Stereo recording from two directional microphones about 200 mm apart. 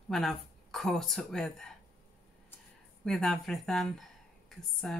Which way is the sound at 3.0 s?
Centre (ahead or behind).